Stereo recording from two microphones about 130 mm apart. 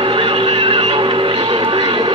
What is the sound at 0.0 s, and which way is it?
Music, 45° right (ahead or behind).